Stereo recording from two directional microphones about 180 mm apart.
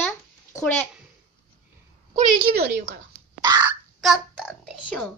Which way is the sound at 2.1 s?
60° right (ahead or behind).